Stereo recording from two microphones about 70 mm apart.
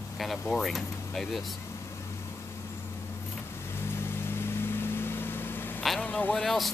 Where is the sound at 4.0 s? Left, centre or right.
Left.